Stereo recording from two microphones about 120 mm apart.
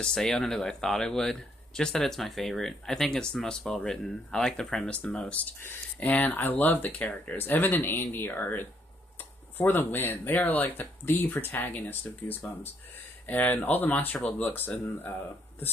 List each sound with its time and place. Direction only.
0.0 s speech: 5° left (ahead or behind)